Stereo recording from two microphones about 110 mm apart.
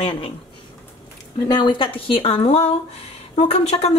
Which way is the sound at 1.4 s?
40° left (ahead or behind).